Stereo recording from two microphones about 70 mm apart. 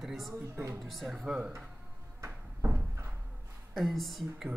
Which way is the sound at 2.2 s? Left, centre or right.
Right.